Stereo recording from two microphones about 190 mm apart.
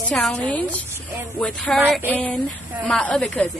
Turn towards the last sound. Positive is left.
turn(degrees=5)  # may be behind; listen again after turning